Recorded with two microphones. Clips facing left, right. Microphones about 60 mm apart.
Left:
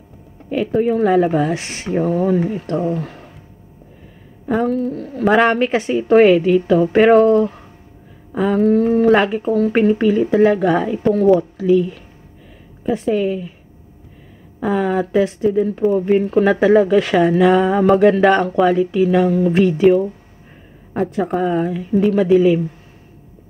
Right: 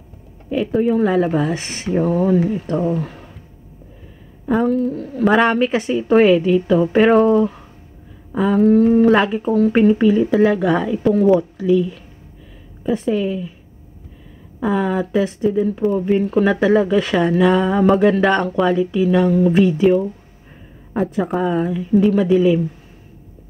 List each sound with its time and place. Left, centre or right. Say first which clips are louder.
0.5 s speech: even; centre
4.5 s speech: right 1 dB; centre
11.1 s speech: left 2 dB; centre
11.6 s speech: left 2 dB; left
12.9 s speech: left 1 dB; centre
14.6 s speech: left 1 dB; centre